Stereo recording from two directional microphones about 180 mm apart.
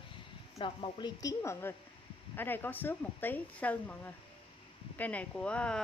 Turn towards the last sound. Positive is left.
turn(degrees=5)  # may be behind; listen again after turning